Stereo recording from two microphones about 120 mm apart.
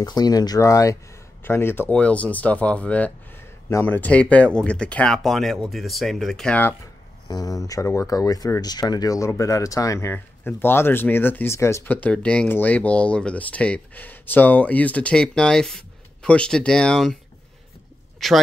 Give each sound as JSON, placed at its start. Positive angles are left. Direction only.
{"t": 0.0, "sound": "speech", "side_deg": 35}
{"t": 7.2, "sound": "speech", "side_deg": 30}
{"t": 18.2, "sound": "speech", "side_deg": 0}